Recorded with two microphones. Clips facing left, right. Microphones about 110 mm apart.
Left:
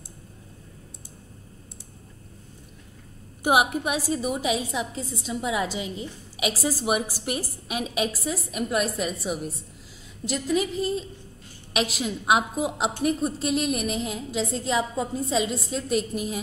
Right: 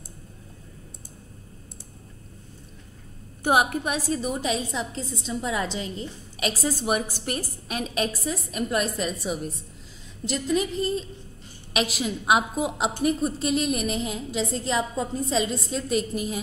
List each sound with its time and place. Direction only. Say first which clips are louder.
3.4 s a woman's voice: even; 10° left (ahead or behind)